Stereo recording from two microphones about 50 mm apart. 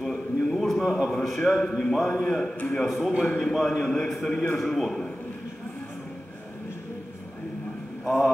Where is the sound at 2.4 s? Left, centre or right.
Left.